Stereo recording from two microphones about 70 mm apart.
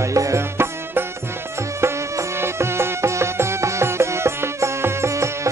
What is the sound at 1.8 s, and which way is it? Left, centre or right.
Music, right.